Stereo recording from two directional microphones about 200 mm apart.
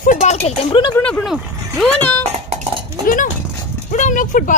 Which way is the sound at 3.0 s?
40° left (ahead or behind).